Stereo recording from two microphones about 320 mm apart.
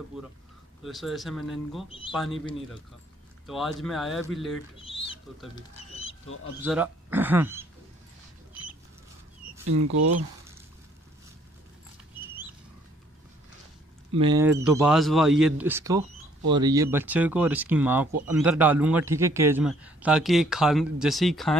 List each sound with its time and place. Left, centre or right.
0.1 s speech: centre
1.9 s speech: centre
3.4 s speech: centre
4.7 s bird: centre
6.6 s speech: centre
9.7 s speech: right
14.1 s speech: centre